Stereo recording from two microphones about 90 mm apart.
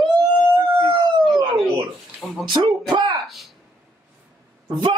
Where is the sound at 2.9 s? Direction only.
55° right (ahead or behind).